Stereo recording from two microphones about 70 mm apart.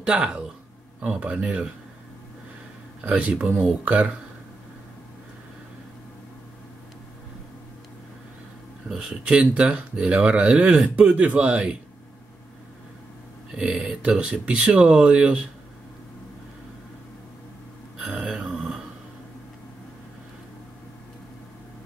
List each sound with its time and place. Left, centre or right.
0.0 s speech: centre
3.0 s speech: centre
8.8 s speech: centre
13.5 s speech: centre
18.0 s a sound: centre